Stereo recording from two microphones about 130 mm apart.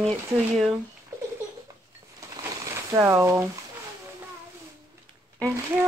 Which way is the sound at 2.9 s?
25° right (ahead or behind).